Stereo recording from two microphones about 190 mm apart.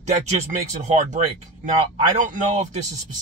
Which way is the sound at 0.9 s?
40° right (ahead or behind).